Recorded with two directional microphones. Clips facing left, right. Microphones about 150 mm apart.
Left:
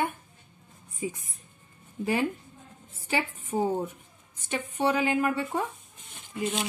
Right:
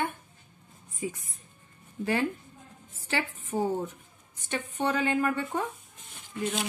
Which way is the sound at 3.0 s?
15° left (ahead or behind).